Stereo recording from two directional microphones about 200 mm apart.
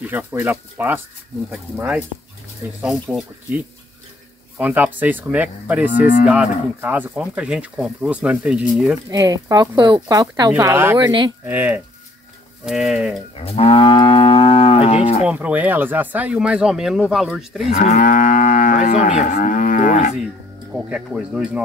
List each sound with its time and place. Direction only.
0.0 s speech: 10° right (ahead or behind)
9.1 s speech: 15° right (ahead or behind)
11.0 s speech: 20° right (ahead or behind)
11.4 s speech: 10° right (ahead or behind)
13.4 s moo: 30° left (ahead or behind)
15.2 s speech: 5° right (ahead or behind)
17.6 s moo: 35° left (ahead or behind)
20.9 s speech: 5° right (ahead or behind)